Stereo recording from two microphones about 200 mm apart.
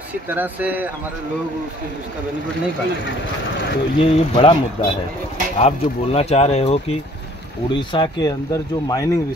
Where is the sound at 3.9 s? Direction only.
30° left (ahead or behind).